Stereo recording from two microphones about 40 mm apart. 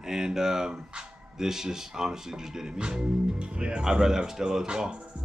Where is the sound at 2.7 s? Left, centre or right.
Right.